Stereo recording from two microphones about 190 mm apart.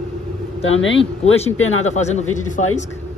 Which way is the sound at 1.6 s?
90° left.